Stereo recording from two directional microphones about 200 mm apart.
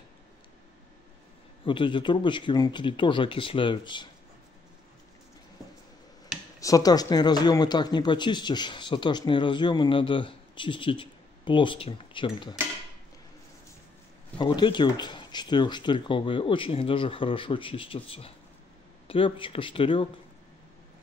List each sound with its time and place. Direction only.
1.7 s speech: 25° left (ahead or behind)
6.6 s speech: 15° left (ahead or behind)
14.4 s speech: 25° left (ahead or behind)